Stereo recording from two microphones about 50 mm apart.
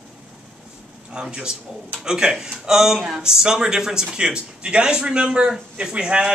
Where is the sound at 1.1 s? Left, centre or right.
Centre.